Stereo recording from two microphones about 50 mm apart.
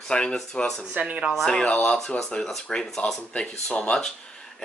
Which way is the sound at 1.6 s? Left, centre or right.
Left.